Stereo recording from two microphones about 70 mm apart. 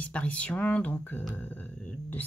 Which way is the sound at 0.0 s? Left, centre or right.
Centre.